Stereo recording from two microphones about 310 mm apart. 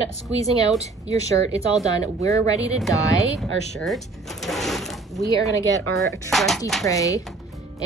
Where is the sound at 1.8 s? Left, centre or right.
Centre.